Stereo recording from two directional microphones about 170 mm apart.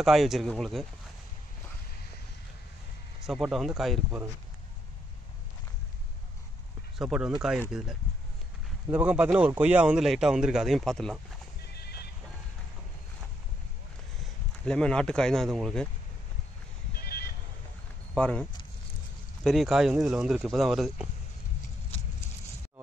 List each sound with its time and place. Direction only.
0.0 s a man's voice: centre (ahead or behind)
3.3 s a man's voice: centre (ahead or behind)
7.0 s a man's voice: 5° right (ahead or behind)
11.7 s music: 70° left (ahead or behind)
14.6 s a man's voice: 5° left (ahead or behind)
17.0 s a sound: 65° left (ahead or behind)
18.1 s speech: 5° left (ahead or behind)
19.4 s a man's voice: centre (ahead or behind)